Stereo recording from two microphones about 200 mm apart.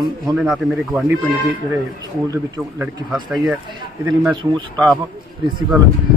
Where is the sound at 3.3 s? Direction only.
Centre (ahead or behind).